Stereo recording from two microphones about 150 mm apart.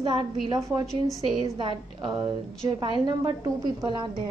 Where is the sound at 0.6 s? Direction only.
20° right (ahead or behind).